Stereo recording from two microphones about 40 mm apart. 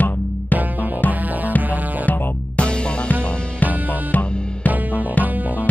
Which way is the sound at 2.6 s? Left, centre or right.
Left.